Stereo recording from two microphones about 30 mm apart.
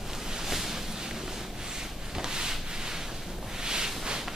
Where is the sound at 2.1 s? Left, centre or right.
Right.